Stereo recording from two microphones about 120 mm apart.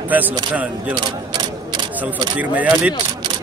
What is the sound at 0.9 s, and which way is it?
Camera, 40° right (ahead or behind).